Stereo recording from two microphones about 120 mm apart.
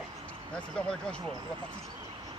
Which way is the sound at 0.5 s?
10° left (ahead or behind).